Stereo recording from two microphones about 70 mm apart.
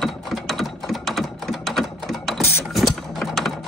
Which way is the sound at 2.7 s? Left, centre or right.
Centre.